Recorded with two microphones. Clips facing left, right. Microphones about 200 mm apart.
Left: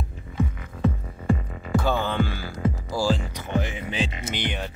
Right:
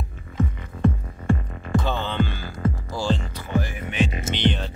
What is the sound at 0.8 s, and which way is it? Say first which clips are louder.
Music: right 2 dB; 5° left (ahead or behind).